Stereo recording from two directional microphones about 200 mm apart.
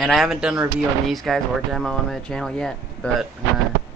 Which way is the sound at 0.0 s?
Centre (ahead or behind).